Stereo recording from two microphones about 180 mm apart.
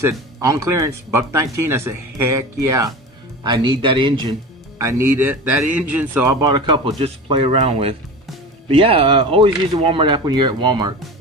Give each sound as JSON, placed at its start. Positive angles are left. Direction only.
{"t": 0.4, "sound": "speech", "side_deg": -15}
{"t": 3.4, "sound": "speech", "side_deg": -25}